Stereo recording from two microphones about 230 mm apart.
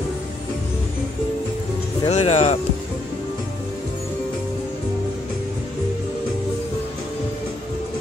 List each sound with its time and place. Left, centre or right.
2.0 s speech: left